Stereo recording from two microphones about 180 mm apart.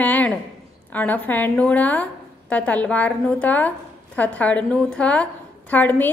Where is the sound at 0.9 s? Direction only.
10° left (ahead or behind).